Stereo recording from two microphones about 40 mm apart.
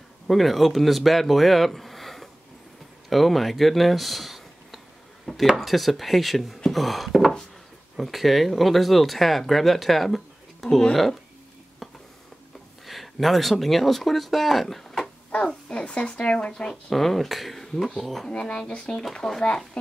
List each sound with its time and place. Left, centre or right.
0.3 s speech: centre
5.6 s speech: centre
12.8 s speech: centre
15.3 s a sound: centre
15.8 s speech: left
16.9 s speech: centre
18.3 s speech: left